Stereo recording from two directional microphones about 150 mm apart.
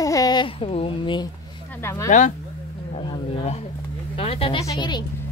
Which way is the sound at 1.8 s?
20° left (ahead or behind).